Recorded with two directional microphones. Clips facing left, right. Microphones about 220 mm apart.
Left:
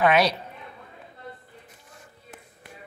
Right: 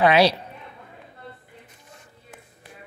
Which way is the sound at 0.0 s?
30° right (ahead or behind).